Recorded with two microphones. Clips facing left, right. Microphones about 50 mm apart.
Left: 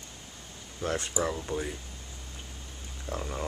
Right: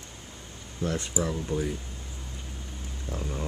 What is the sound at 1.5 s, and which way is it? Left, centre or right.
Speech, centre.